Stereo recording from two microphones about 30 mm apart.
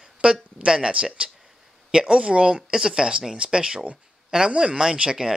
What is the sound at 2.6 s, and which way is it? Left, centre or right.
Speech, right.